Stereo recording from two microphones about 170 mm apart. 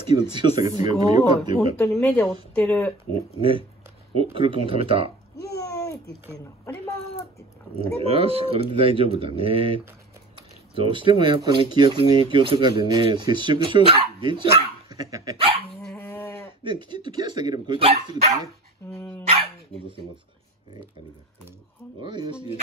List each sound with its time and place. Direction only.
0.1 s speech: 25° right (ahead or behind)
1.8 s speech: 5° left (ahead or behind)
3.3 s speech: 35° right (ahead or behind)
5.4 s a sound: 20° left (ahead or behind)
8.1 s speech: 35° right (ahead or behind)
14.9 s speech: 20° right (ahead or behind)
15.8 s dog: 5° left (ahead or behind)
16.6 s speech: 25° right (ahead or behind)
22.0 s speech: 30° right (ahead or behind)